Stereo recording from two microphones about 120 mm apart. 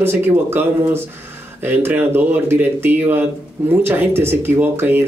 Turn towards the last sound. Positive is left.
turn(degrees=-20)  # may be behind; listen again after turning